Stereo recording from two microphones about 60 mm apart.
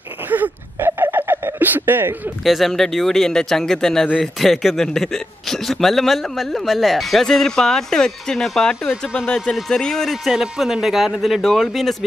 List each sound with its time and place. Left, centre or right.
0.3 s a sound: right
2.4 s a man's voice: centre
10.2 s a man's voice: centre